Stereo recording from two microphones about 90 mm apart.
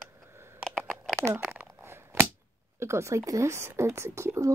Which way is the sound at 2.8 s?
30° right (ahead or behind).